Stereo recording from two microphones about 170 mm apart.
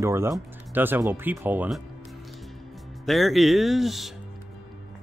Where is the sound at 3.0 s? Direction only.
Centre (ahead or behind).